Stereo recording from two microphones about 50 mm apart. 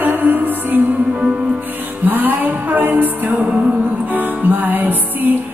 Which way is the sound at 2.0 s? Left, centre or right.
Right.